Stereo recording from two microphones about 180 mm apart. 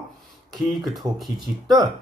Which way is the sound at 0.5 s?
Centre (ahead or behind).